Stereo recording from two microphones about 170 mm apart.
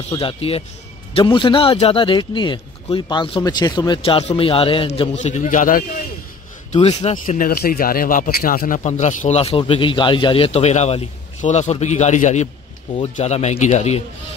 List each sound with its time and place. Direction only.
0.1 s a man's voice: 35° left (ahead or behind); by 5.9 s 50° left (ahead or behind)
6.7 s a man's voice: 40° left (ahead or behind)
7.2 s a man's voice: 55° left (ahead or behind); by 14.0 s 40° left (ahead or behind)